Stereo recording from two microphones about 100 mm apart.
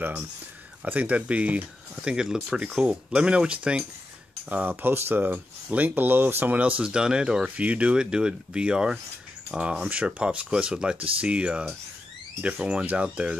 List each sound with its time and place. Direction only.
0.8 s speech: 15° right (ahead or behind)